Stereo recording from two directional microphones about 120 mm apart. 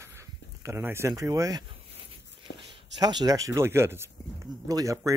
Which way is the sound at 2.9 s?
35° right (ahead or behind).